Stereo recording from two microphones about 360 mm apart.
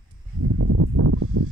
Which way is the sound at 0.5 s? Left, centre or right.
Right.